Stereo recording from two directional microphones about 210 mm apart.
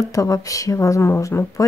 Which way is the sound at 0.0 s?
15° left (ahead or behind).